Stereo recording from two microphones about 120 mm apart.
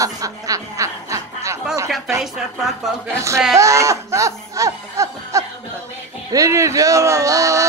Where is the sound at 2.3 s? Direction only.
5° right (ahead or behind).